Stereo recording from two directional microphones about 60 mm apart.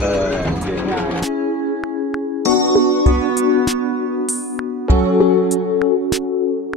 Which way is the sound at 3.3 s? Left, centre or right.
Centre.